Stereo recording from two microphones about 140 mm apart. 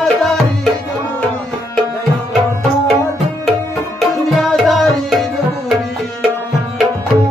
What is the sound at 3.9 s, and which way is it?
Tabla, centre (ahead or behind).